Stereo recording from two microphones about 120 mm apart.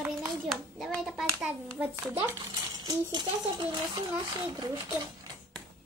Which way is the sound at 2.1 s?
20° right (ahead or behind).